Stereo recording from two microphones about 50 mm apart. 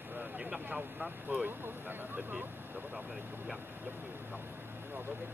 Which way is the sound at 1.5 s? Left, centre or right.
Right.